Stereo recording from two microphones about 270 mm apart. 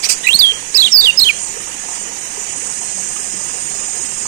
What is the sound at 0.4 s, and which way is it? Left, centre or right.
Bird, centre.